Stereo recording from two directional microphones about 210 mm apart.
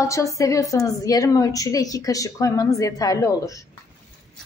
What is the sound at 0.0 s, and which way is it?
A woman's voice, 15° left (ahead or behind).